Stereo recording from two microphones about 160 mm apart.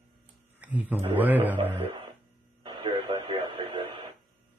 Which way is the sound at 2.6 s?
30° right (ahead or behind).